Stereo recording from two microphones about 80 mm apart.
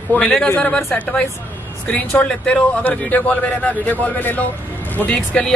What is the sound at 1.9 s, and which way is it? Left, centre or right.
A man's voice, centre.